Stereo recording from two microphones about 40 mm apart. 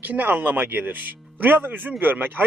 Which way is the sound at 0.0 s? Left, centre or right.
Right.